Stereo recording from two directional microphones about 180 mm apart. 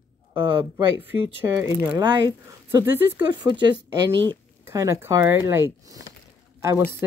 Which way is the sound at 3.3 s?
25° right (ahead or behind).